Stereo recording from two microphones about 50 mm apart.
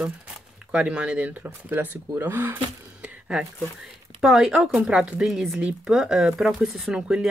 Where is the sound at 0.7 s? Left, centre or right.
Right.